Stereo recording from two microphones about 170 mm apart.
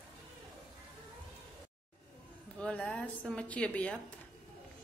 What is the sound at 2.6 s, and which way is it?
A woman's voice, 5° left (ahead or behind).